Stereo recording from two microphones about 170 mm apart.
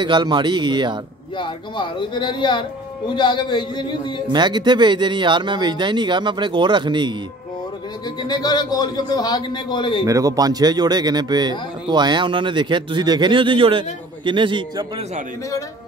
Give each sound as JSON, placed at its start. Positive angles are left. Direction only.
{"t": 0.0, "sound": "speech", "side_deg": -25}
{"t": 1.4, "sound": "a man's voice", "side_deg": 30}
{"t": 4.3, "sound": "speech", "side_deg": -25}
{"t": 8.2, "sound": "a man's voice", "side_deg": 25}
{"t": 10.0, "sound": "speech", "side_deg": -20}